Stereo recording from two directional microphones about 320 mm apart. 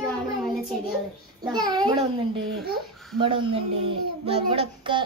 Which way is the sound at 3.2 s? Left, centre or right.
Centre.